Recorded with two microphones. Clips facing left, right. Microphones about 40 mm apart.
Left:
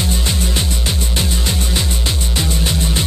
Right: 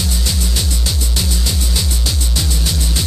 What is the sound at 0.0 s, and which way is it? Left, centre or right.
Music, left.